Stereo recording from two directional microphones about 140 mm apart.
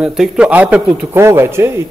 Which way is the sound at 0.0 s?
5° right (ahead or behind).